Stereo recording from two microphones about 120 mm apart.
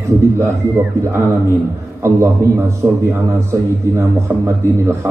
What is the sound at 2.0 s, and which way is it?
A man's voice, 25° right (ahead or behind).